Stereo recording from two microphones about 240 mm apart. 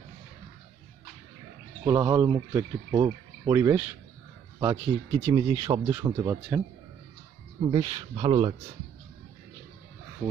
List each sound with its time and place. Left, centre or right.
1.9 s speech: centre
7.7 s speech: right